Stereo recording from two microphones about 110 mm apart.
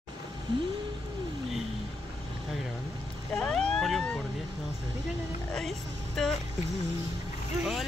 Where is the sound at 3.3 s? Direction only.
5° left (ahead or behind).